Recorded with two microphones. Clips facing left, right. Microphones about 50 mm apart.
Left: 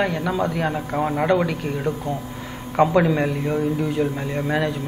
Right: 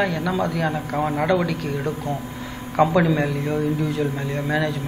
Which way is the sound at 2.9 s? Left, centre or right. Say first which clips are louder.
Left 1 dB; centre.